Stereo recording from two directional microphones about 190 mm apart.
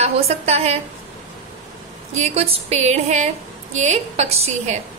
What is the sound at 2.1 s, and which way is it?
A woman's voice, 35° right (ahead or behind).